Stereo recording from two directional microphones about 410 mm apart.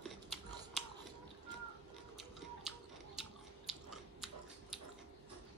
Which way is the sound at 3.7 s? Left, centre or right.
Centre.